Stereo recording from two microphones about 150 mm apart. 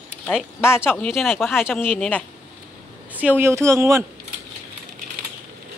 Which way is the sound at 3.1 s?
10° right (ahead or behind).